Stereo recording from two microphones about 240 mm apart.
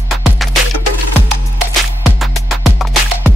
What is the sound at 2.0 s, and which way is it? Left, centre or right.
Music, centre.